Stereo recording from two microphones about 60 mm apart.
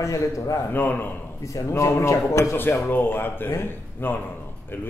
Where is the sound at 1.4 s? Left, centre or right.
Left.